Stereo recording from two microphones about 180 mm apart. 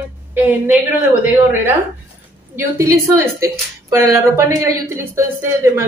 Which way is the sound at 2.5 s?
15° right (ahead or behind).